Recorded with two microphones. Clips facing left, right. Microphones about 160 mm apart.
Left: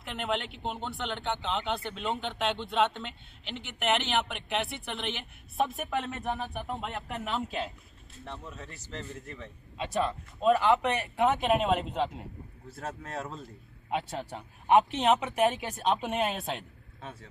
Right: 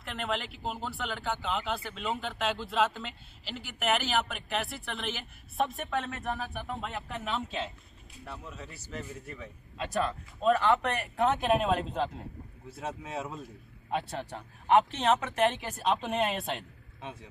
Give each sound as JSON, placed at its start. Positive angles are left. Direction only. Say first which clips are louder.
{"t": 0.0, "sound": "speech", "louder": "left 2 dB", "side_deg": 0}
{"t": 14.1, "sound": "a man's voice", "louder": "left 1 dB", "side_deg": 15}
{"t": 14.9, "sound": "speech", "louder": "left 2 dB", "side_deg": 0}
{"t": 15.1, "sound": "a man's voice", "louder": "left 1 dB", "side_deg": 15}
{"t": 15.4, "sound": "speech", "louder": "even", "side_deg": 0}